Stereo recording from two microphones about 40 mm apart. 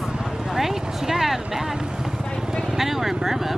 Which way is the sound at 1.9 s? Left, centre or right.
Centre.